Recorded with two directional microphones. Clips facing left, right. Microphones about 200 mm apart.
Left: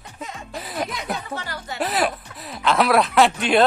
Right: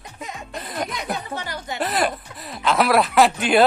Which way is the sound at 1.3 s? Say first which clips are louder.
Right 1 dB; 20° right (ahead or behind).